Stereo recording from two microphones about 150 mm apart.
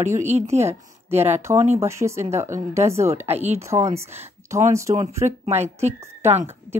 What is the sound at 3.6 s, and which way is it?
Speech, 20° right (ahead or behind).